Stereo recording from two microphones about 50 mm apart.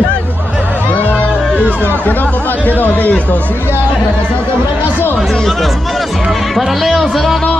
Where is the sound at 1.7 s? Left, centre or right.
Left.